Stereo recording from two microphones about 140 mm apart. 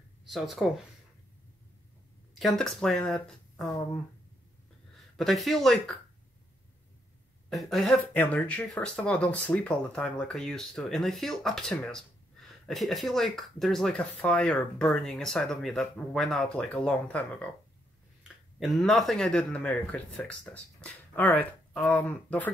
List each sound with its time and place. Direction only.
0.2 s speech: centre (ahead or behind)
2.3 s speech: centre (ahead or behind)
5.1 s speech: centre (ahead or behind)
7.4 s speech: centre (ahead or behind)
8.0 s speech: 10° left (ahead or behind)
18.6 s speech: centre (ahead or behind)